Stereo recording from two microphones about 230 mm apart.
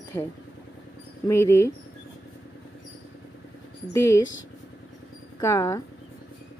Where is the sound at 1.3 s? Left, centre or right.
Centre.